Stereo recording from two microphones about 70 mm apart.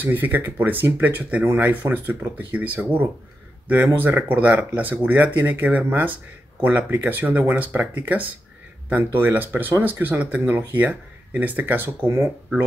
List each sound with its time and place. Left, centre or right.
0.0 s speech: right